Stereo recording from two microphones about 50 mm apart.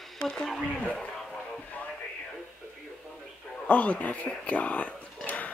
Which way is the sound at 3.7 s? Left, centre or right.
Left.